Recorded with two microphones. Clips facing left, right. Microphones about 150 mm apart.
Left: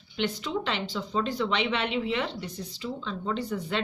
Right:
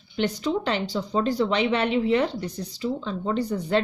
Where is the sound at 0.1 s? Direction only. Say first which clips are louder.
Right 5 dB; 40° right (ahead or behind).